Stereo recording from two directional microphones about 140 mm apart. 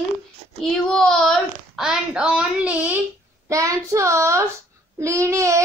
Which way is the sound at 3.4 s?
25° right (ahead or behind).